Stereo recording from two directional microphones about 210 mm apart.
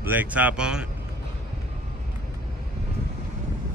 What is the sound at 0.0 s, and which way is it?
Speech, 10° right (ahead or behind).